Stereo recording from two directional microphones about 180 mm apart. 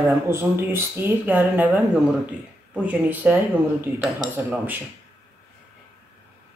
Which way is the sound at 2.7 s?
10° right (ahead or behind).